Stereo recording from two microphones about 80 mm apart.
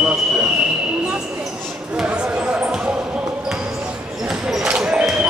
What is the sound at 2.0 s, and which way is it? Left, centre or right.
Basketball bounce, centre.